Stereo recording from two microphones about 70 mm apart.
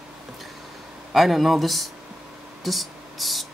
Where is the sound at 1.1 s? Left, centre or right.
Centre.